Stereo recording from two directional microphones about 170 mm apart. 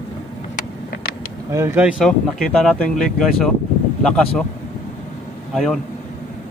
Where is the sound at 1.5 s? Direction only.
15° right (ahead or behind); by 3.5 s 5° left (ahead or behind).